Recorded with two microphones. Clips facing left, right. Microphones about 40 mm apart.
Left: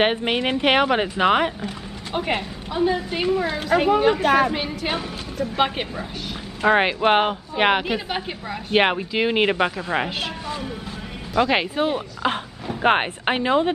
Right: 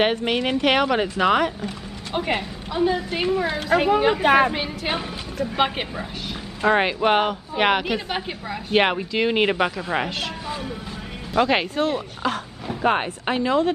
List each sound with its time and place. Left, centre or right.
0.0 s speech: centre
2.1 s a woman's voice: centre
6.6 s a woman's voice: centre
12.8 s speech: left